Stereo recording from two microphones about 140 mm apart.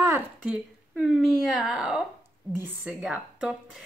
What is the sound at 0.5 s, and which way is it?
Speech, 5° right (ahead or behind).